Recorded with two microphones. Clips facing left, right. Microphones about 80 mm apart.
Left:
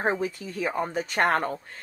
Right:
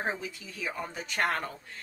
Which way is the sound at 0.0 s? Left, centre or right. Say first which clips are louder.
Left 8 dB; left.